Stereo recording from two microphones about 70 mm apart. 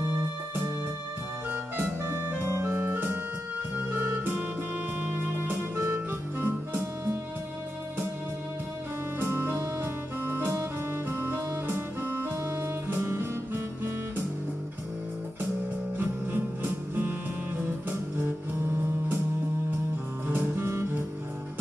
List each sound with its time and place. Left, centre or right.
1.5 s music: right
9.2 s music: right
16.0 s music: right
20.2 s music: right